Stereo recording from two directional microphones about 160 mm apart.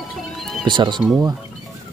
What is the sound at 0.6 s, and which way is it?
Speech, 30° right (ahead or behind).